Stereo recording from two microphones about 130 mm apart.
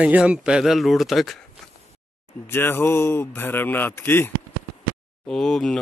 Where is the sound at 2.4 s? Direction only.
20° left (ahead or behind).